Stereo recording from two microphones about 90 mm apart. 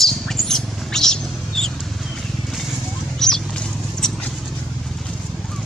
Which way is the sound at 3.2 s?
5° left (ahead or behind).